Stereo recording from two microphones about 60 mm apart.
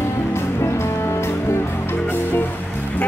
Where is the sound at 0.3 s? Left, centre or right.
Left.